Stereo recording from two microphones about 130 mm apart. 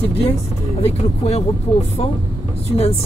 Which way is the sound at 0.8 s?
50° left (ahead or behind).